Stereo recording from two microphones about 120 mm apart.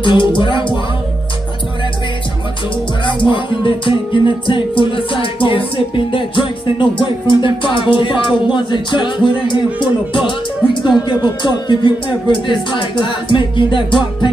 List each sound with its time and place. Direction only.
0.0 s music: 45° left (ahead or behind)
3.1 s music: 45° left (ahead or behind)